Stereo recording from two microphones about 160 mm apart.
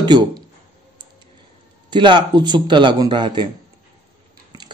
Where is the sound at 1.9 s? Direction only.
30° right (ahead or behind).